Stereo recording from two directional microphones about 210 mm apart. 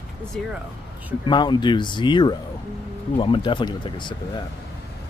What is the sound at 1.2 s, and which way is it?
Speech, 20° left (ahead or behind).